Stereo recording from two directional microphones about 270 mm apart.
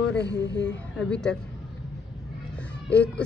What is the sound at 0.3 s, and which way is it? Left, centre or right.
Speech, left.